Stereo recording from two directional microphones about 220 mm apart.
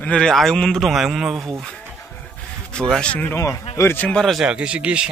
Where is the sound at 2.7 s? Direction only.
5° left (ahead or behind).